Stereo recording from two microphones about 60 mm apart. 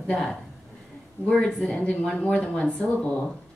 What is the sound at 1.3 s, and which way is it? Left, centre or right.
Speech, centre.